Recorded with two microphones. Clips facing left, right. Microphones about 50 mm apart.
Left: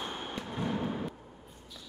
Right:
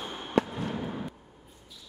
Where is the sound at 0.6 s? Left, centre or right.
Centre.